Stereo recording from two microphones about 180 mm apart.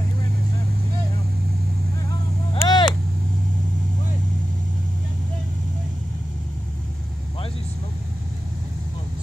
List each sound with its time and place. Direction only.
2.5 s vehicle: 30° left (ahead or behind)